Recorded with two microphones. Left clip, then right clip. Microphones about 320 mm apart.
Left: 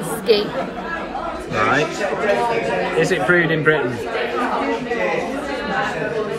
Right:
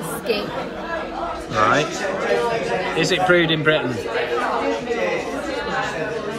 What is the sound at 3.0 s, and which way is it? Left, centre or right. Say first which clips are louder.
Speech: even; centre.